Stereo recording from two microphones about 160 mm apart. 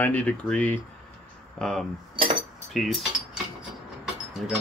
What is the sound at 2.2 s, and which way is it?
Cutlery, 30° right (ahead or behind).